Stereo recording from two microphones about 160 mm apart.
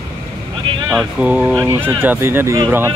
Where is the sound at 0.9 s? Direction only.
10° right (ahead or behind).